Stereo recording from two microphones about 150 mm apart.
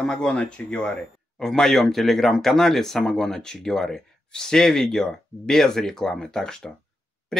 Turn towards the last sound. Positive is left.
turn(degrees=5)  # may be behind; listen again after turning